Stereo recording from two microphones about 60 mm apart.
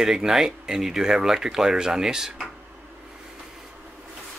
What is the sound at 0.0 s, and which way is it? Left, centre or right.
Speech, centre.